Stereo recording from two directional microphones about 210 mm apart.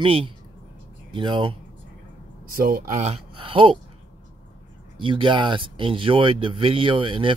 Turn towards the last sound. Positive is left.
turn(degrees=-25)  # may be behind; listen again after turning